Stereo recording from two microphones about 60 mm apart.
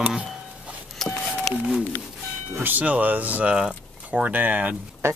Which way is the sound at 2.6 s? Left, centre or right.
Right.